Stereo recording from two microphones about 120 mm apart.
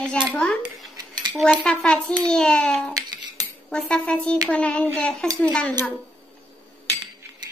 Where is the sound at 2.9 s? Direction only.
30° right (ahead or behind).